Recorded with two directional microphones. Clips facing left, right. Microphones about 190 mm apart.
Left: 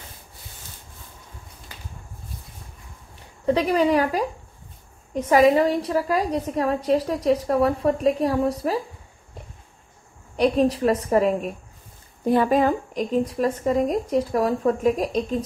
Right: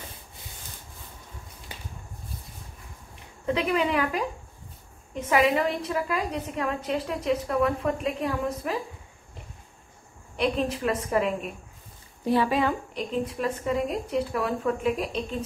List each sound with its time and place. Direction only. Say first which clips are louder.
3.4 s a woman's voice: left 6 dB; 35° left (ahead or behind)
10.3 s a woman's voice: left 7 dB; 40° left (ahead or behind)